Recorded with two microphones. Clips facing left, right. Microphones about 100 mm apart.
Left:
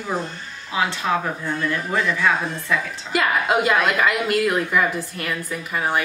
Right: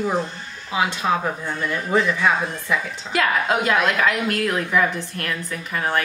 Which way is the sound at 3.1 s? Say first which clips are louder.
Left 1 dB; 5° left (ahead or behind).